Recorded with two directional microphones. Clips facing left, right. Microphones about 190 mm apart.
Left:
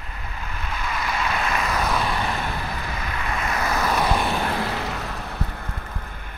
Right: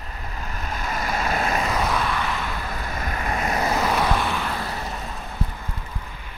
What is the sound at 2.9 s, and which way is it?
Vehicle, 45° right (ahead or behind).